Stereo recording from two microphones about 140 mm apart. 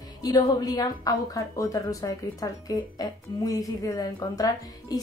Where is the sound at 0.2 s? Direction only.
25° left (ahead or behind).